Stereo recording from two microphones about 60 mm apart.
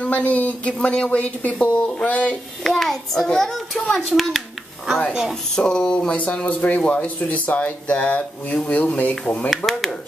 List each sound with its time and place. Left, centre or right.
0.0 s speech: left
2.6 s a child's voice: centre
5.6 s a child's voice: centre
9.7 s a child's voice: centre